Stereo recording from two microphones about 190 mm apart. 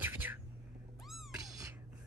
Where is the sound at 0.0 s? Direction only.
10° right (ahead or behind).